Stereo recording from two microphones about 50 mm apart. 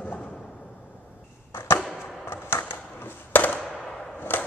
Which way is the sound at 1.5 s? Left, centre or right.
Left.